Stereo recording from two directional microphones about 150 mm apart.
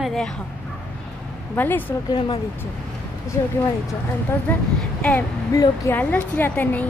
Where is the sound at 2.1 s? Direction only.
35° left (ahead or behind).